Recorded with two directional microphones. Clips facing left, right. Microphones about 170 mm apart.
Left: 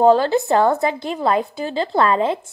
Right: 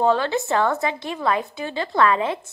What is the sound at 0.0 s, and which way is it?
A woman's voice, 35° left (ahead or behind).